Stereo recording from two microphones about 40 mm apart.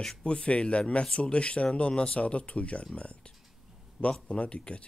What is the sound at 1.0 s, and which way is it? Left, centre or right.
Speech, centre.